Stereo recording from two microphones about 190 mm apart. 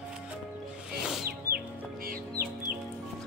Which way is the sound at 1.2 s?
50° right (ahead or behind).